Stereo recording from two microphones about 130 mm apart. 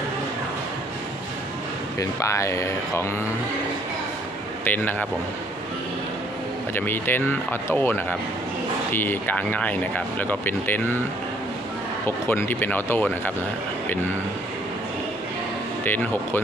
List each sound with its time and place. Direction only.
2.0 s speech: 25° left (ahead or behind)
4.6 s speech: 15° left (ahead or behind)
6.7 s speech: 15° left (ahead or behind)
12.3 s speech: 15° left (ahead or behind)
15.8 s speech: 15° left (ahead or behind)